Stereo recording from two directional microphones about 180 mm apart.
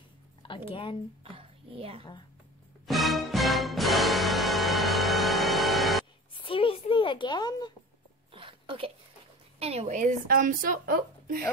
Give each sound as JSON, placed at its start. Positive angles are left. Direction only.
{"t": 0.7, "sound": "speech", "side_deg": 30}
{"t": 1.2, "sound": "speech", "side_deg": -30}
{"t": 2.9, "sound": "music", "side_deg": 0}
{"t": 6.3, "sound": "a sound", "side_deg": 30}
{"t": 8.3, "sound": "a sound", "side_deg": -30}
{"t": 9.6, "sound": "a woman's voice", "side_deg": -35}